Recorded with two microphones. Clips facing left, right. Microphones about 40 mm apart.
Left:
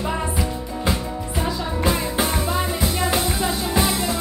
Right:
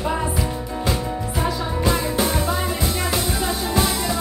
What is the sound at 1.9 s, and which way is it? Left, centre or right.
Music, centre.